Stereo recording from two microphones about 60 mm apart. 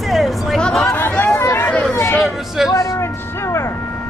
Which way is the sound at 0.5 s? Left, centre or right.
Centre.